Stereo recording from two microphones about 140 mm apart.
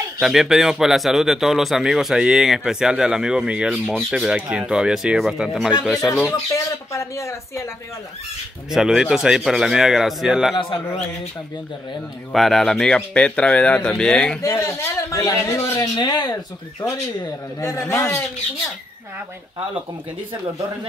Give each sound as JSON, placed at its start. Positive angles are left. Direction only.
{"t": 0.2, "sound": "speech", "side_deg": -5}
{"t": 6.5, "sound": "a man's voice", "side_deg": 20}
{"t": 8.6, "sound": "speech", "side_deg": -5}
{"t": 10.5, "sound": "speech", "side_deg": 35}
{"t": 12.3, "sound": "speech", "side_deg": 0}
{"t": 14.4, "sound": "a man's voice", "side_deg": 20}